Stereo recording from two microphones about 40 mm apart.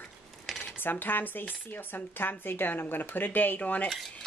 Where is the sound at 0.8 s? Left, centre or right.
Left.